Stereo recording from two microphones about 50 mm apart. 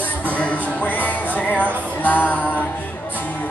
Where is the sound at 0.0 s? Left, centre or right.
Left.